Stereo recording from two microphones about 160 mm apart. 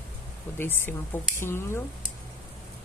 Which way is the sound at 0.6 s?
15° left (ahead or behind).